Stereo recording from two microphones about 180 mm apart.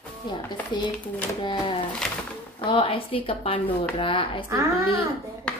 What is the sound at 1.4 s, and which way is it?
Speech, 25° left (ahead or behind).